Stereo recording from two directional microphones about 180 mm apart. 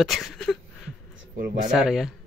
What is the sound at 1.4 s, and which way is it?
Speech, 60° right (ahead or behind).